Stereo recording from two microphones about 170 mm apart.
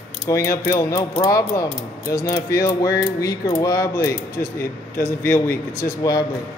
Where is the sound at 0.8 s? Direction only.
20° left (ahead or behind).